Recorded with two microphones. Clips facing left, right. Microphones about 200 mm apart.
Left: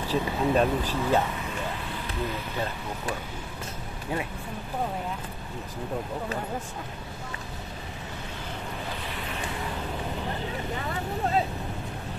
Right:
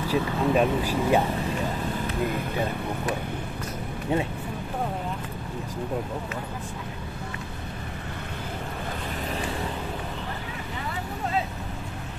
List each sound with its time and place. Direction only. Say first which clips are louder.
0.1 s speech: right 1 dB; 10° right (ahead or behind)
4.1 s speech: right 5 dB; 25° right (ahead or behind)